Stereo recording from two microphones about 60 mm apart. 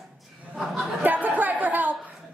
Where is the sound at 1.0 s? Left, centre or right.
Right.